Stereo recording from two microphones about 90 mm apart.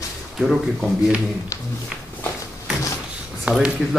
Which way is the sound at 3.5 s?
15° right (ahead or behind).